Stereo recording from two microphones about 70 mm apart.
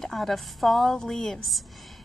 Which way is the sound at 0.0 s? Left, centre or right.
Centre.